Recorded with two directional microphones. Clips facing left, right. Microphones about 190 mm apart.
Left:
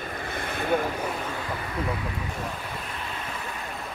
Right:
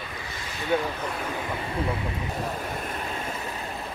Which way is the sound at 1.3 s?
25° right (ahead or behind).